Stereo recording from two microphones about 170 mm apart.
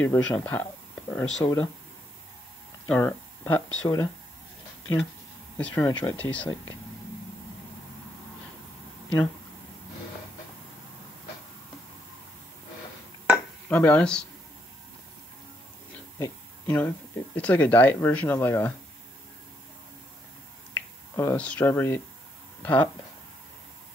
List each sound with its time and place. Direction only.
0.0 s speech: 10° left (ahead or behind)
3.0 s speech: 10° left (ahead or behind)
5.6 s speech: 10° left (ahead or behind)
5.9 s speech: 20° left (ahead or behind)
6.1 s speech: 10° left (ahead or behind)
13.7 s speech: 10° left (ahead or behind)
16.2 s speech: 10° left (ahead or behind)
20.7 s speech: 15° left (ahead or behind)